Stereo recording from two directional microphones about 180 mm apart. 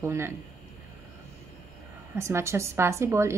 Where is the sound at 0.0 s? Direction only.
15° right (ahead or behind).